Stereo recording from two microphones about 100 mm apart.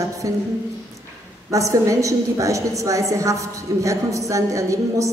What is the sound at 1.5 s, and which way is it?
A man's voice, 35° right (ahead or behind).